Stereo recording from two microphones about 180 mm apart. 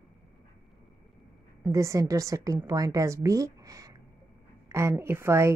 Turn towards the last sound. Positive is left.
turn(degrees=-15)  # may be behind; listen again after turning